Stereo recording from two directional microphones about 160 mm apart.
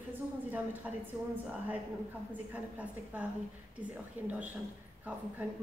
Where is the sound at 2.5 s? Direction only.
10° right (ahead or behind).